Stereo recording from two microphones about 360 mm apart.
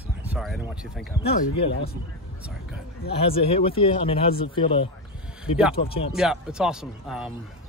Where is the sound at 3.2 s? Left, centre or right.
Centre.